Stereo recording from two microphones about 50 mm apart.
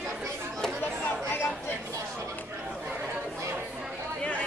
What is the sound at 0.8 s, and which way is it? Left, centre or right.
Chatter, left.